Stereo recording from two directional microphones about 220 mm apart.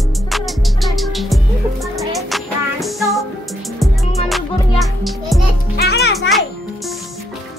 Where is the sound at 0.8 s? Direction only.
Centre (ahead or behind).